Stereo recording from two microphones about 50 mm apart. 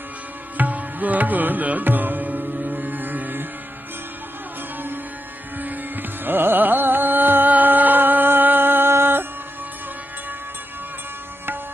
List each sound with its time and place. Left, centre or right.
0.6 s tabla: right
6.2 s music: right